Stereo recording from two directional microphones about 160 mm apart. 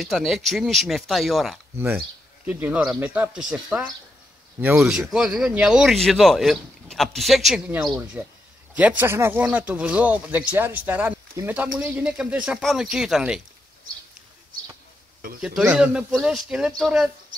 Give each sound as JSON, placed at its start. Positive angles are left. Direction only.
{"t": 0.0, "sound": "speech", "side_deg": 0}
{"t": 15.4, "sound": "speech", "side_deg": -5}